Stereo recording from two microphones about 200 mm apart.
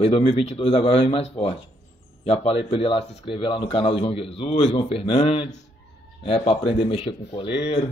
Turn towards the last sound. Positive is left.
turn(degrees=30)  # may be behind; listen again after turning